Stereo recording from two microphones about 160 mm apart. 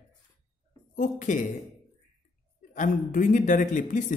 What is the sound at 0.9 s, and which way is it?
Speech, 50° left (ahead or behind).